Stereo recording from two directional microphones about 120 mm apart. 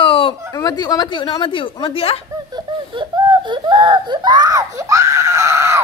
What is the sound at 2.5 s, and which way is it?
Wheeze, 40° right (ahead or behind).